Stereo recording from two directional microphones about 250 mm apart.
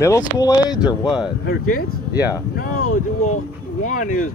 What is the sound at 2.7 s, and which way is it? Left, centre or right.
Boat, left.